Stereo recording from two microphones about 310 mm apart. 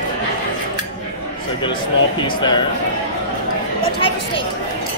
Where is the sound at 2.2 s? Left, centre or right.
Centre.